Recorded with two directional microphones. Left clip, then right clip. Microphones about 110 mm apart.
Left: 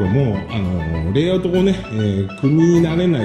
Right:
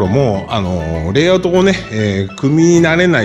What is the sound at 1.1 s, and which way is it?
Speech, 40° right (ahead or behind).